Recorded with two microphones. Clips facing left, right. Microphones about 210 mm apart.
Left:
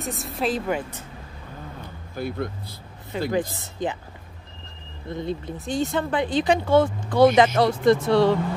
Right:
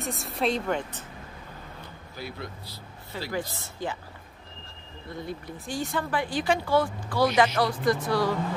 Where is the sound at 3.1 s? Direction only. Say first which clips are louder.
Left 8 dB; 20° left (ahead or behind).